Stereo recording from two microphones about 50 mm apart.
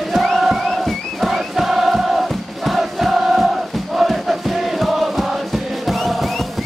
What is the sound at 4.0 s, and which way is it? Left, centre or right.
Music, centre.